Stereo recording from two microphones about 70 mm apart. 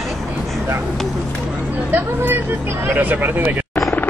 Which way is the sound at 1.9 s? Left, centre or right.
Right.